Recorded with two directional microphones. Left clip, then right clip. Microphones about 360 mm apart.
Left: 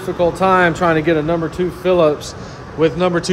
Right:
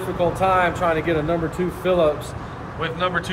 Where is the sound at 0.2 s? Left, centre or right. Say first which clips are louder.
Left 5 dB; left.